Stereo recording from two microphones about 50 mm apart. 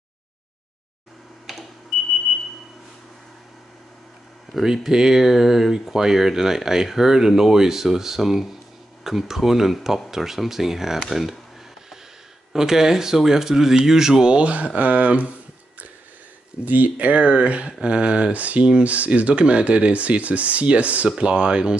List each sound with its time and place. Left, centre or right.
4.8 s speech: centre
12.5 s speech: centre
14.4 s speech: right
16.6 s speech: right; by 21.7 s centre